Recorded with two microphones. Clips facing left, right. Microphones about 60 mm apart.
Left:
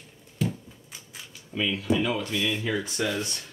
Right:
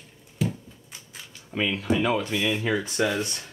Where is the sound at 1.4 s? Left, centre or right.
Right.